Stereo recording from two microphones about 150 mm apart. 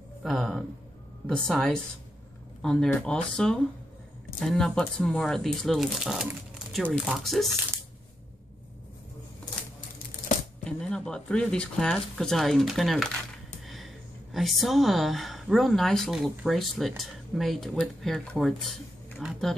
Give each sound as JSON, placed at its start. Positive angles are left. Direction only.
{"t": 0.2, "sound": "speech", "side_deg": 0}
{"t": 10.6, "sound": "speech", "side_deg": 5}
{"t": 14.3, "sound": "speech", "side_deg": 0}